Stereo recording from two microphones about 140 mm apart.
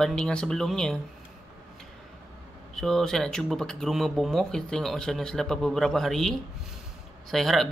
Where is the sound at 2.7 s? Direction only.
5° left (ahead or behind).